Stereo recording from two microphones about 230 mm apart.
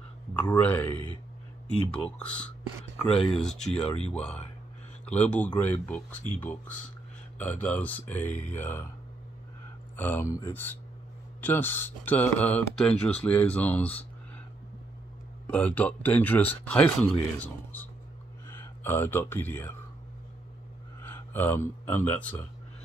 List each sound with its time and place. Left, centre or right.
0.5 s speech: centre
7.3 s speech: centre
9.9 s speech: centre
15.4 s speech: centre
21.0 s speech: centre